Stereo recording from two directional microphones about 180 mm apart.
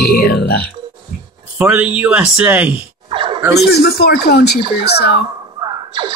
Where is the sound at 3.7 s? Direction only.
60° left (ahead or behind).